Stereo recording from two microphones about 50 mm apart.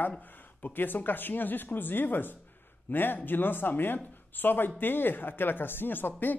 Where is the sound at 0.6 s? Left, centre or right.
Left.